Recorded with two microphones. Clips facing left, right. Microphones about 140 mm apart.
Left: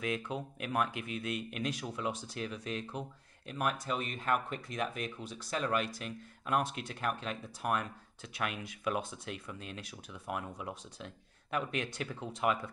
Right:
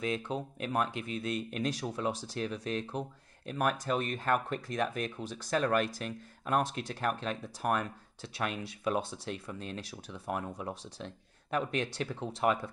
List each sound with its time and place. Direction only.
0.0 s speech: 30° right (ahead or behind)